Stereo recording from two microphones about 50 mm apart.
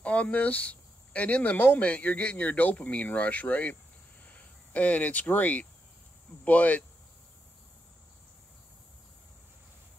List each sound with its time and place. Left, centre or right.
0.0 s speech: left